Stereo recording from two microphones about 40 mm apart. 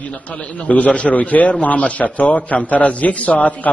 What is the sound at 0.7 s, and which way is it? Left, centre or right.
A man's voice, left.